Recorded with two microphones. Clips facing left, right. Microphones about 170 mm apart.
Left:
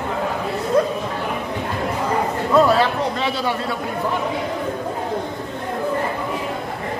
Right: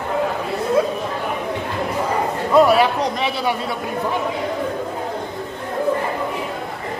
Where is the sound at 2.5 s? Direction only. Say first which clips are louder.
Right 2 dB; 15° right (ahead or behind).